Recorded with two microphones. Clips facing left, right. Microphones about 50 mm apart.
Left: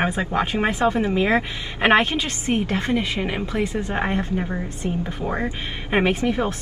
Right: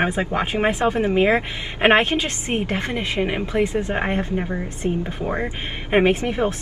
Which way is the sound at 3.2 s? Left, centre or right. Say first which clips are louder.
Right 3 dB; centre.